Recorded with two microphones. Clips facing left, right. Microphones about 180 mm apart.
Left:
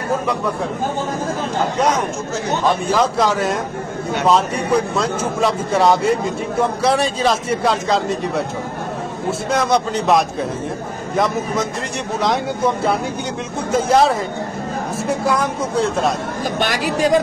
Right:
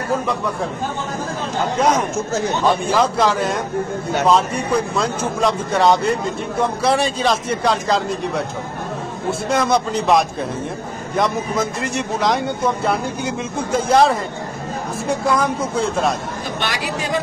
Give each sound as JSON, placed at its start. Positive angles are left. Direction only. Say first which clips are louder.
{"t": 2.6, "sound": "speech", "louder": "left 1 dB", "side_deg": 0}
{"t": 9.5, "sound": "speech", "louder": "even", "side_deg": 0}
{"t": 15.2, "sound": "speech", "louder": "right 2 dB", "side_deg": 0}
{"t": 16.5, "sound": "a woman's voice", "louder": "left 5 dB", "side_deg": 45}